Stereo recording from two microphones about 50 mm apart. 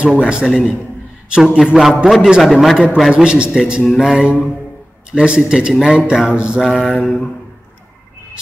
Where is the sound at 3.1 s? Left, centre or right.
Centre.